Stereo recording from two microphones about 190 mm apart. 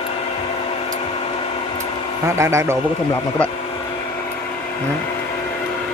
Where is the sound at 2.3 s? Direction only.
15° right (ahead or behind).